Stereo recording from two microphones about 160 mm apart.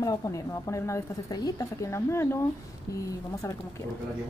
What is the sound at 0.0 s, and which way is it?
Speech, 20° left (ahead or behind).